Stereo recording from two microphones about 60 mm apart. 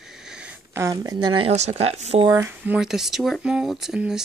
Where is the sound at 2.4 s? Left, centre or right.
Right.